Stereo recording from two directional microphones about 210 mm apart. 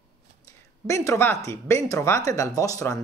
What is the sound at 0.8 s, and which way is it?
Speech, 15° left (ahead or behind).